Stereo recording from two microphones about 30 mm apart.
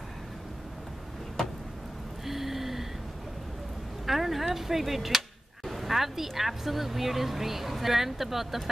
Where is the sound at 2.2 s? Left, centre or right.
Centre.